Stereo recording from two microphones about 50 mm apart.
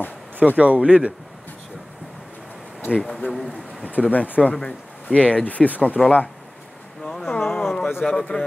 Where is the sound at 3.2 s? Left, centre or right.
Left.